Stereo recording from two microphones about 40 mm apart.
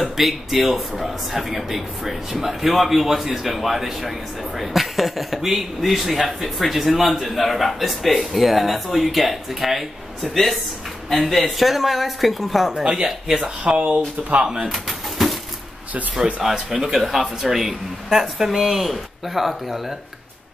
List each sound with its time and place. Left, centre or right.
0.0 s a man's voice: centre
12.8 s speech: right
14.7 s bird: centre
16.4 s a man's voice: centre